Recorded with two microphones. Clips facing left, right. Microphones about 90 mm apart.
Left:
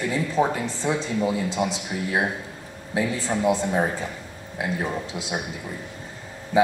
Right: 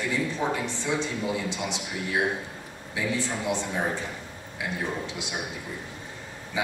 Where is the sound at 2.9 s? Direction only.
40° left (ahead or behind).